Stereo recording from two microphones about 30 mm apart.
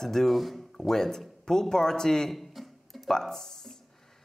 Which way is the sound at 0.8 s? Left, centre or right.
Centre.